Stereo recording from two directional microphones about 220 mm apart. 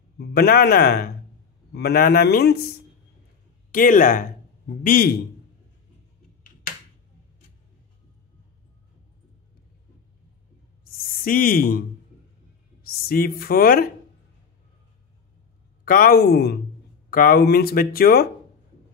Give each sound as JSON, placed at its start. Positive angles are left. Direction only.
{"t": 0.2, "sound": "speech", "side_deg": 45}
{"t": 3.7, "sound": "speech", "side_deg": 40}
{"t": 11.2, "sound": "speech", "side_deg": 40}
{"t": 12.8, "sound": "a woman's voice", "side_deg": 40}
{"t": 15.8, "sound": "speech", "side_deg": 40}